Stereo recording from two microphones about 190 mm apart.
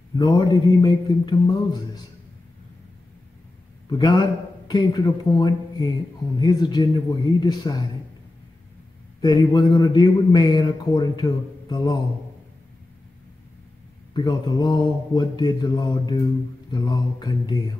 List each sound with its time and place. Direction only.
0.2 s a man's voice: 25° left (ahead or behind)
3.9 s a man's voice: 20° left (ahead or behind)
9.2 s a man's voice: 25° left (ahead or behind)
14.1 s a man's voice: 20° left (ahead or behind)